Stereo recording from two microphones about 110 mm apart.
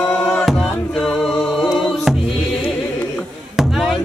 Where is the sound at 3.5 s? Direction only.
Centre (ahead or behind).